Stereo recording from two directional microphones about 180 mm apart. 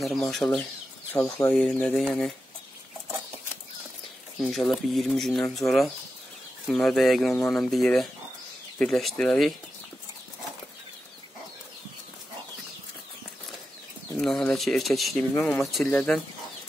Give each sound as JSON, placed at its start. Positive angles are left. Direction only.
{"t": 0.0, "sound": "speech", "side_deg": 0}
{"t": 1.1, "sound": "speech", "side_deg": 15}
{"t": 1.5, "sound": "speech", "side_deg": 0}
{"t": 4.4, "sound": "speech", "side_deg": 0}
{"t": 14.1, "sound": "speech", "side_deg": 5}